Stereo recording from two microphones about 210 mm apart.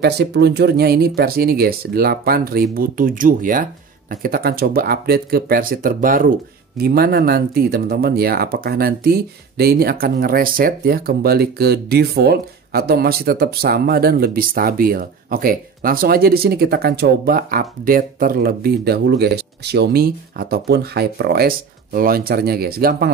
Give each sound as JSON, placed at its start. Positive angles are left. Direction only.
{"t": 0.0, "sound": "speech", "side_deg": -50}